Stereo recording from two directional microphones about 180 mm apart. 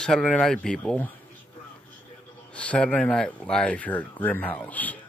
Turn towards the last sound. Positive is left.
turn(degrees=10)  # may be behind; listen again after turning